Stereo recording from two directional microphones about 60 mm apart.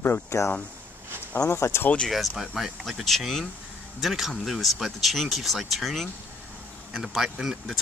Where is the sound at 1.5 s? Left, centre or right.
Left.